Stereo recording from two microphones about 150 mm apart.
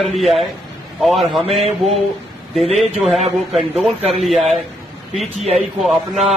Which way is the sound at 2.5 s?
Centre (ahead or behind).